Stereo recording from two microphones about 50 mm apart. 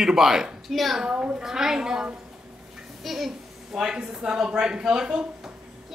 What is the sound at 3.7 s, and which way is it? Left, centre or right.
A child's voice, centre.